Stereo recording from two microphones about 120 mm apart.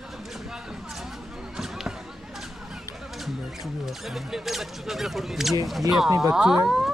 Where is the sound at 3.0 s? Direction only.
Centre (ahead or behind).